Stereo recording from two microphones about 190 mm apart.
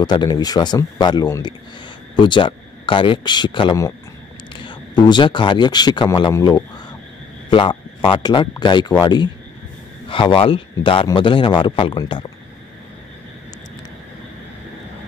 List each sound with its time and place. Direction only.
0.0 s a man's voice: 20° left (ahead or behind)